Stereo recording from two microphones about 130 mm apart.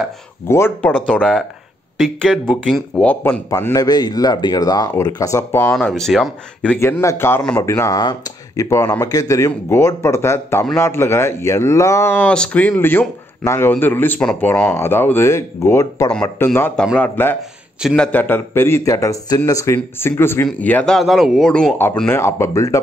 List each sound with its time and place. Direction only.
0.5 s a man's voice: 20° left (ahead or behind)
3.4 s speech: 25° left (ahead or behind)
5.9 s a man's voice: 5° left (ahead or behind)
6.8 s a man's voice: 20° left (ahead or behind); by 21.7 s 5° left (ahead or behind)
22.1 s speech: 20° left (ahead or behind)